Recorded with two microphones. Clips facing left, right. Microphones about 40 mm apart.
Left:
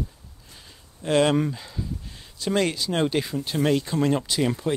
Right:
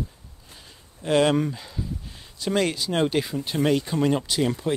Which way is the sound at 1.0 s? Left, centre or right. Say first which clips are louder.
Even; centre.